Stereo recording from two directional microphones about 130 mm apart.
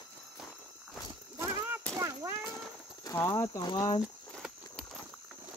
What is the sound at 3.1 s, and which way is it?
Speech, 20° left (ahead or behind).